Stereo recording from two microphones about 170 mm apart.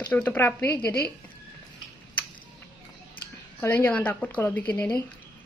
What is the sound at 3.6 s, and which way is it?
A woman's voice, 15° left (ahead or behind).